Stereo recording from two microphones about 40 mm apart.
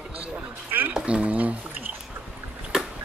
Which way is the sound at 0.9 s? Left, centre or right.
Right.